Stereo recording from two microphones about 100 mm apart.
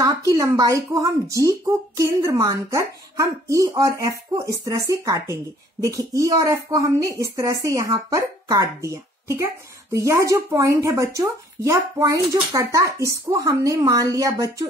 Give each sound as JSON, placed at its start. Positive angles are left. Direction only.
{"t": 0.3, "sound": "speech", "side_deg": -30}